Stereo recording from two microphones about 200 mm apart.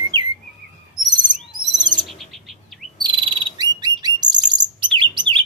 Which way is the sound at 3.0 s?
20° right (ahead or behind).